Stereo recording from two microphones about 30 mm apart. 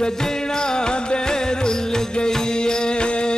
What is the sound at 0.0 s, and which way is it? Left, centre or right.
Music, left.